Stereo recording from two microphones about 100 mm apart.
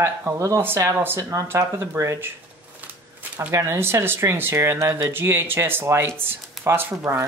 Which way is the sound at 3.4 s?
30° right (ahead or behind).